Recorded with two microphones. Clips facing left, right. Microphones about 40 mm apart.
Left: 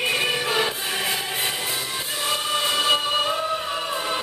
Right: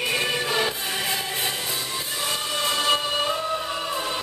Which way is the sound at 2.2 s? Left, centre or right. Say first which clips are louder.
Left 3 dB; centre.